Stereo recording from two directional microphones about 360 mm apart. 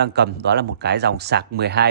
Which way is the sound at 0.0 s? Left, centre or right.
Right.